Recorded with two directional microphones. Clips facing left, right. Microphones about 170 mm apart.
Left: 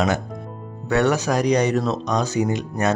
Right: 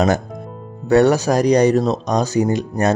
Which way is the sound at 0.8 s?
35° right (ahead or behind).